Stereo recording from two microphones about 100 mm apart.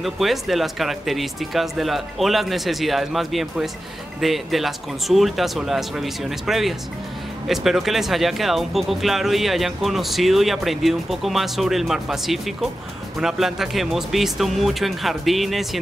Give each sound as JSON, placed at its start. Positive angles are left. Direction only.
{"t": 0.0, "sound": "speech", "side_deg": 0}